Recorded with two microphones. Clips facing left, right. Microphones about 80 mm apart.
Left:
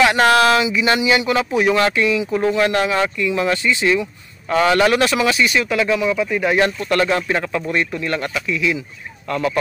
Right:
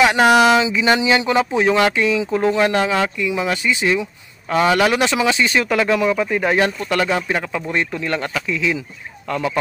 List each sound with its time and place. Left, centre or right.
0.0 s speech: centre
5.7 s speech: right
6.9 s speech: centre